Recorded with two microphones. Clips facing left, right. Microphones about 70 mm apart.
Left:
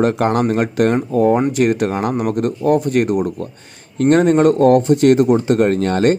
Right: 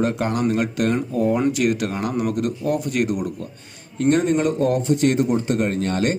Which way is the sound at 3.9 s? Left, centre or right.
Left.